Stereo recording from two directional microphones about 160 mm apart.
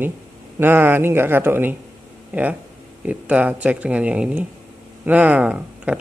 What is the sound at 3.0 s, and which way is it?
Speech, 10° right (ahead or behind).